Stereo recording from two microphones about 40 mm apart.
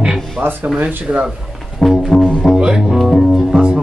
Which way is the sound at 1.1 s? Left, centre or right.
Right.